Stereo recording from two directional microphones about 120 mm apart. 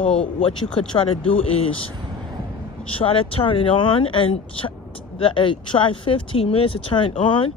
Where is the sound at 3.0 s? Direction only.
50° left (ahead or behind).